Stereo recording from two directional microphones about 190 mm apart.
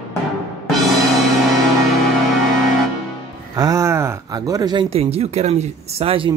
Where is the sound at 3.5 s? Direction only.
15° right (ahead or behind).